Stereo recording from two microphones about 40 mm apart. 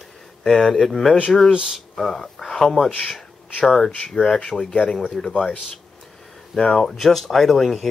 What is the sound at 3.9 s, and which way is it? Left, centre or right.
Speech, left.